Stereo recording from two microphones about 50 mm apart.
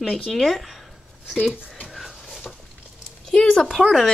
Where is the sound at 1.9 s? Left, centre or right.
Centre.